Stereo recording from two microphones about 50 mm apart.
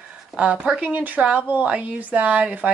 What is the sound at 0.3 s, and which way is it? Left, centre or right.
Speech, centre.